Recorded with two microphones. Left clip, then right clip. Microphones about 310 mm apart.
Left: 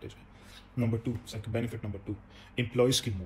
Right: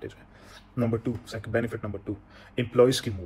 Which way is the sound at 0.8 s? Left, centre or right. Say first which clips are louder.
Right 6 dB; centre.